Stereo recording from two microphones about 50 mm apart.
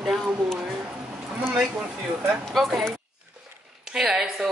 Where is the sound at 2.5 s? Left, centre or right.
Centre.